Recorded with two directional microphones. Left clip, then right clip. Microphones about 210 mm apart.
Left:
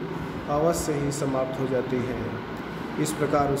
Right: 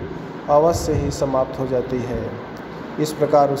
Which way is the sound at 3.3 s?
15° right (ahead or behind).